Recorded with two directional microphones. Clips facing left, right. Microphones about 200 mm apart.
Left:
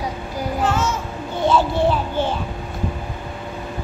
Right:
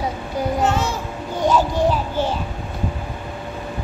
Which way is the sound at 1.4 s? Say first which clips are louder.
Even; 40° right (ahead or behind).